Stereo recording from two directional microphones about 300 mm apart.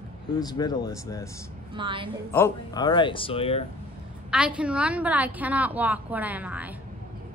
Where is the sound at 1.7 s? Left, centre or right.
Centre.